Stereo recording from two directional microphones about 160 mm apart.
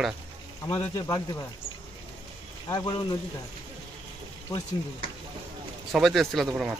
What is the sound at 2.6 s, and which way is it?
Speech, 30° left (ahead or behind).